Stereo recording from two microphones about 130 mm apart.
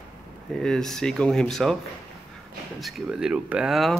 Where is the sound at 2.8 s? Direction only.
5° right (ahead or behind).